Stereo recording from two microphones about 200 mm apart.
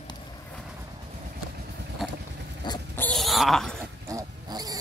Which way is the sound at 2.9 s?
5° left (ahead or behind).